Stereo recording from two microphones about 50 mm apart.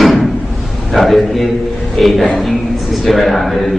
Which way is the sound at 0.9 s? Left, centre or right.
Centre.